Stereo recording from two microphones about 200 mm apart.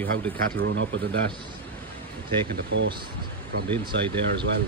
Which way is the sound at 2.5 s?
70° right (ahead or behind).